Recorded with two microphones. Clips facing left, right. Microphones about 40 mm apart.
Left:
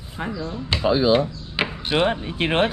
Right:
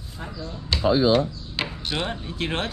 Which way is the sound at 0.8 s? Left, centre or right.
Left.